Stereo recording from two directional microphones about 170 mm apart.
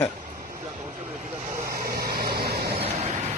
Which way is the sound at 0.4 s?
50° right (ahead or behind).